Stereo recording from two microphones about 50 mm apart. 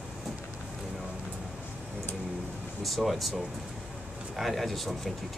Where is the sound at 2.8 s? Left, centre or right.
Centre.